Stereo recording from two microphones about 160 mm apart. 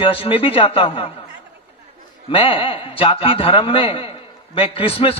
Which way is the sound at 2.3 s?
35° left (ahead or behind).